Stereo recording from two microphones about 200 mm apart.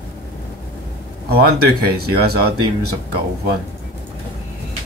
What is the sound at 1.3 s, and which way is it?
Speech, 50° right (ahead or behind).